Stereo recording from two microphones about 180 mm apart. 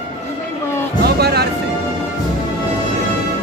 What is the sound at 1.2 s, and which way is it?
Music, 65° right (ahead or behind).